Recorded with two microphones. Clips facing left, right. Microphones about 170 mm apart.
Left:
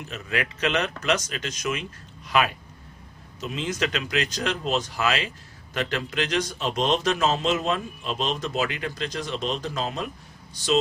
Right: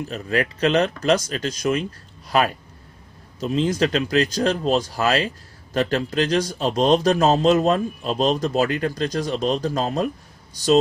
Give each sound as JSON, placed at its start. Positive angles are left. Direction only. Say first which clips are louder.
{"t": 0.0, "sound": "speech", "louder": "right 6 dB", "side_deg": -35}